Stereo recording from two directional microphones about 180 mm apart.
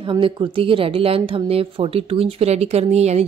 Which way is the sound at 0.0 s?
25° right (ahead or behind).